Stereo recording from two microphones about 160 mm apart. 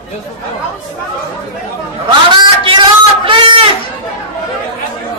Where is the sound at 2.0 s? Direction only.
30° right (ahead or behind).